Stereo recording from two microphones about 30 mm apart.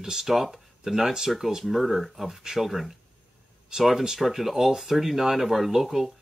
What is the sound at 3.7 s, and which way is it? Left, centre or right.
Speech, right.